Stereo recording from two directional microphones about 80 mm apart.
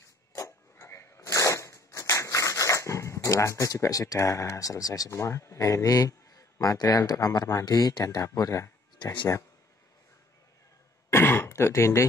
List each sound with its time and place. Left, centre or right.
0.3 s a sound: left
5.2 s speech: left
9.0 s speech: left
11.1 s throat clearing: left